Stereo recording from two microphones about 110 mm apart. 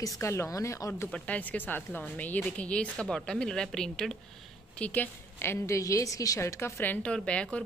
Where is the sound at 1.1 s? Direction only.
10° left (ahead or behind).